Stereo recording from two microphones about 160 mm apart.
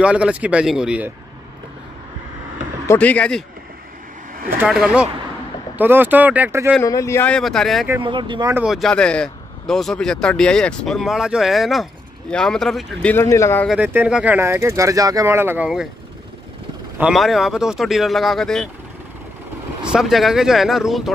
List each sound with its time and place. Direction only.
0.0 s speech: 5° right (ahead or behind)
2.9 s speech: 10° left (ahead or behind)
4.6 s speech: 5° right (ahead or behind)
6.8 s speech: 20° left (ahead or behind); by 7.9 s centre (ahead or behind)
8.0 s speech: 30° right (ahead or behind)
8.5 s speech: centre (ahead or behind)
13.1 s speech: 15° left (ahead or behind)
13.7 s speech: 10° right (ahead or behind)
17.0 s speech: centre (ahead or behind)
19.8 s speech: 5° right (ahead or behind)